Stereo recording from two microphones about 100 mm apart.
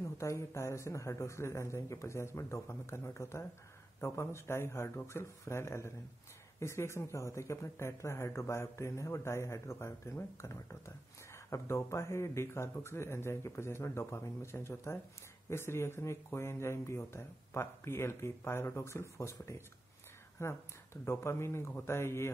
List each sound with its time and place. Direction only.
0.0 s speech: 30° left (ahead or behind)